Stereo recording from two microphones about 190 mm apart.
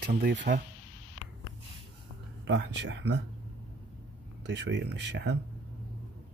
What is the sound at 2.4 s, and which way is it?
Speech, 70° right (ahead or behind).